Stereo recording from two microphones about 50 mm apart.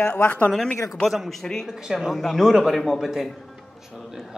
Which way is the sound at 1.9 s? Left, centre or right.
Centre.